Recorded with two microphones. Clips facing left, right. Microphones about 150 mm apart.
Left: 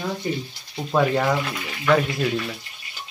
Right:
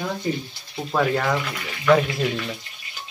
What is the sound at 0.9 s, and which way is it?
Speech, 10° left (ahead or behind).